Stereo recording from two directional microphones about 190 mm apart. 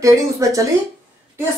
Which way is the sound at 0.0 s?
15° right (ahead or behind).